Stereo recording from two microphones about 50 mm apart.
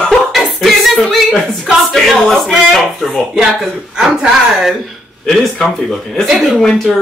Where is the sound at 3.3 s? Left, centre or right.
Centre.